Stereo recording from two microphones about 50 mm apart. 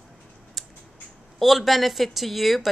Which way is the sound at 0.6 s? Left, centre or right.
Centre.